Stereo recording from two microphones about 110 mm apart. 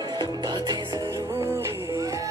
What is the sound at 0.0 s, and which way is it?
Music, 45° right (ahead or behind).